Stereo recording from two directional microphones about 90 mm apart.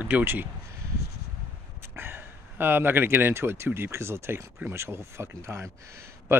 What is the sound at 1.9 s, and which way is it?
Speech, 25° right (ahead or behind).